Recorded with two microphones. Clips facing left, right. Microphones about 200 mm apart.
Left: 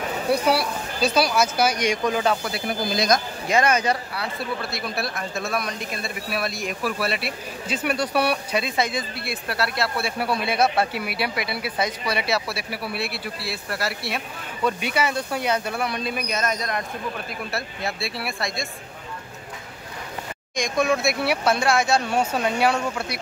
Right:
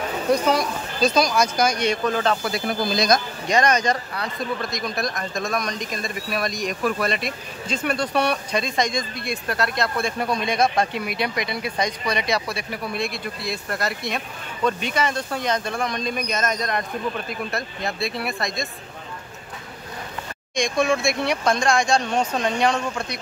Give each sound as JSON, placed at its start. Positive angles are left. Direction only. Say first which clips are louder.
{"t": 0.3, "sound": "speech", "louder": "right 1 dB", "side_deg": 10}
{"t": 3.4, "sound": "speech", "louder": "even", "side_deg": 5}
{"t": 20.5, "sound": "speech", "louder": "right 1 dB", "side_deg": 0}